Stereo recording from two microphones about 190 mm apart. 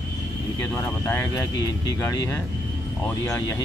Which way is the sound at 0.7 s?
15° left (ahead or behind).